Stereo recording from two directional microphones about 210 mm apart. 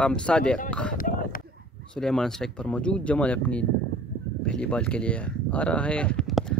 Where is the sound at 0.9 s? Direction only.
40° left (ahead or behind).